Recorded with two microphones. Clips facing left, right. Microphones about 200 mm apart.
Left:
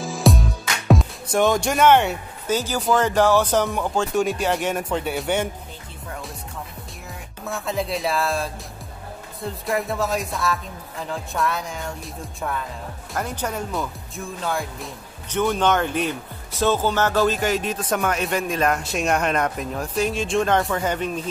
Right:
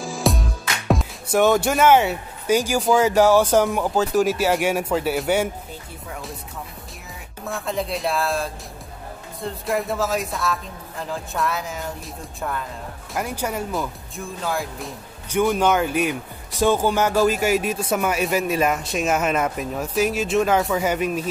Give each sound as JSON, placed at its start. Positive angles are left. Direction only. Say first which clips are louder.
{"t": 0.0, "sound": "music", "louder": "left 2 dB", "side_deg": 0}
{"t": 2.8, "sound": "speech", "louder": "right 1 dB", "side_deg": -5}
{"t": 7.4, "sound": "speech", "louder": "even", "side_deg": 0}